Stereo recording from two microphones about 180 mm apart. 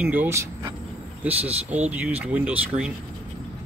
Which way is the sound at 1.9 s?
10° right (ahead or behind).